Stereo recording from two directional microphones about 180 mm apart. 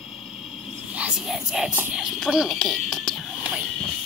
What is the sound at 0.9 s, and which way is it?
Speech, 5° right (ahead or behind).